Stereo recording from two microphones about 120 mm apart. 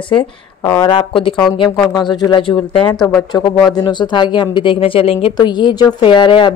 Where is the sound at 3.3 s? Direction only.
30° left (ahead or behind); by 5.3 s 50° left (ahead or behind).